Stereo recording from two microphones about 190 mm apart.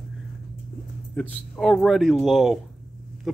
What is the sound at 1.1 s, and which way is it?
Speech, centre (ahead or behind).